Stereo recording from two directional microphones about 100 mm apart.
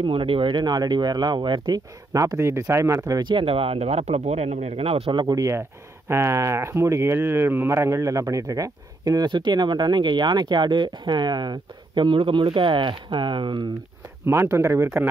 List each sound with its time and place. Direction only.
0.0 s speech: 60° right (ahead or behind)
2.1 s speech: 30° right (ahead or behind)
3.2 s speech: 55° right (ahead or behind); by 5.1 s 80° right
5.1 s speech: 40° right (ahead or behind)
14.2 s speech: 25° right (ahead or behind)